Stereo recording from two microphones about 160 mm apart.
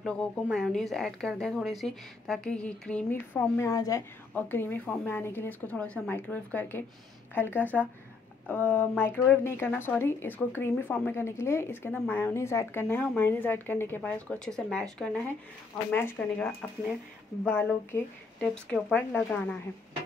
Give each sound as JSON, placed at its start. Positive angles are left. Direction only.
{"t": 0.0, "sound": "speech", "side_deg": 5}